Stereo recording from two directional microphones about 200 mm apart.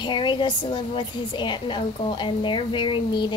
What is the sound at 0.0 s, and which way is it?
A woman's voice, 25° left (ahead or behind).